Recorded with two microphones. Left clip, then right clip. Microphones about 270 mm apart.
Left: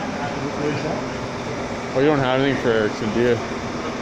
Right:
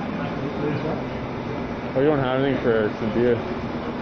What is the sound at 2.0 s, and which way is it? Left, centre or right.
Speech, left.